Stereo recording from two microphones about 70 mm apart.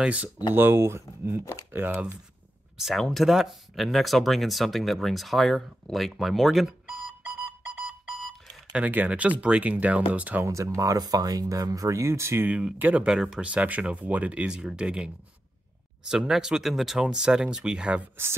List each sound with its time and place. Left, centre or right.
0.0 s speech: centre
0.6 s speech: right
2.8 s speech: centre
7.2 s alarm clock: right
8.7 s speech: right
10.4 s speech: right
11.0 s speech: right
12.4 s speech: centre
13.0 s speech: centre
16.1 s speech: centre